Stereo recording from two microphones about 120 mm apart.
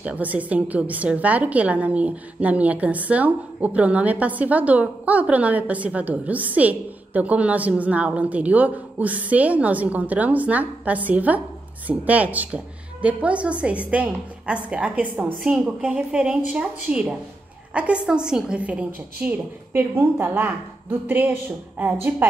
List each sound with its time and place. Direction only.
0.0 s a woman's voice: 15° right (ahead or behind)